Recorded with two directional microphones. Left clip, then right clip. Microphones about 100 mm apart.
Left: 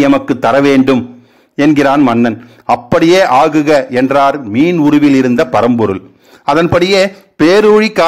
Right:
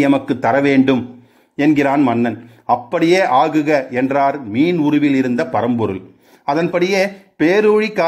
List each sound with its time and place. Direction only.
0.2 s a man's voice: 25° left (ahead or behind)
2.6 s a man's voice: 25° left (ahead or behind)
3.0 s a man's voice: 35° left (ahead or behind)